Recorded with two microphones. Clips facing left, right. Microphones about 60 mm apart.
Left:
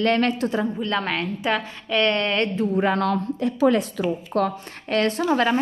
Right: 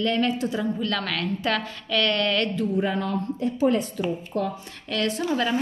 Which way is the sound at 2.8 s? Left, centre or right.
Left.